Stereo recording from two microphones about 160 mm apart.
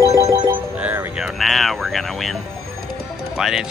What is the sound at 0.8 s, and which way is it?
Speech, 10° right (ahead or behind).